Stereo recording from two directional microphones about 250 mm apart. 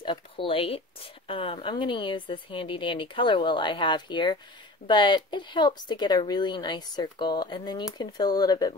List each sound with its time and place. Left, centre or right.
0.0 s speech: centre